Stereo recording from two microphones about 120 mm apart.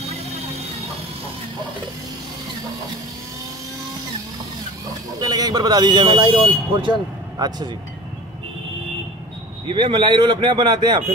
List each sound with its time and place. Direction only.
5.2 s speech: 30° right (ahead or behind)
9.7 s speech: 40° right (ahead or behind)